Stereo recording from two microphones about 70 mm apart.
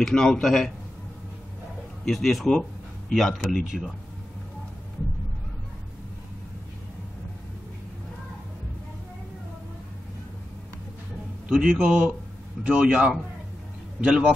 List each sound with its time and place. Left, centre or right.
0.0 s speech: centre
2.0 s speech: centre
11.4 s a man's voice: centre